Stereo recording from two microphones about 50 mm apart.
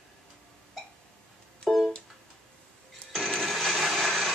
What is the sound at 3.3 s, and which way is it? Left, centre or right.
Blender, centre.